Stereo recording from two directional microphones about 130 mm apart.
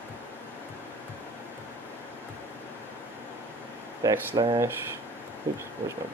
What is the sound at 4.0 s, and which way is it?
Speech, 30° right (ahead or behind).